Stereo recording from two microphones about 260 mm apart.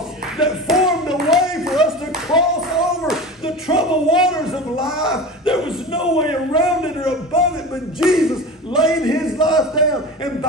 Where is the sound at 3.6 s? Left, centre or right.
Centre.